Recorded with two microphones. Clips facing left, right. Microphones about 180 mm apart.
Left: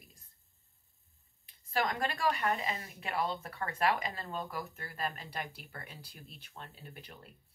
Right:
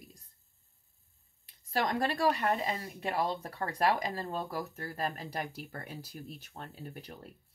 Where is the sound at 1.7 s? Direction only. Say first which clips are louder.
Right 3 dB; 35° right (ahead or behind).